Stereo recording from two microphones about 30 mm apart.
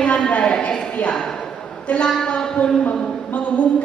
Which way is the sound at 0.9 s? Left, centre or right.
Left.